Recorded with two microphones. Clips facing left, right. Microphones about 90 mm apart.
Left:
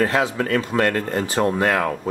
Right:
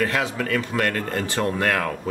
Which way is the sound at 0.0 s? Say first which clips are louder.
Left 4 dB; 30° left (ahead or behind).